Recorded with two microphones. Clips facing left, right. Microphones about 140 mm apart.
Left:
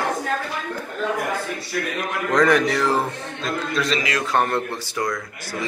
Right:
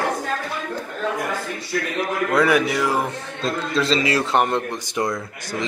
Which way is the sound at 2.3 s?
10° right (ahead or behind).